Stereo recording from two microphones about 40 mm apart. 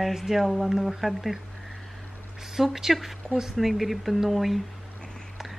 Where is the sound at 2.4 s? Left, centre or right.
Centre.